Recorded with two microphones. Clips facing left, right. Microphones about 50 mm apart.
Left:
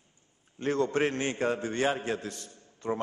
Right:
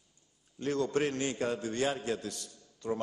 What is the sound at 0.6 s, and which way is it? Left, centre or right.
A man's voice, left.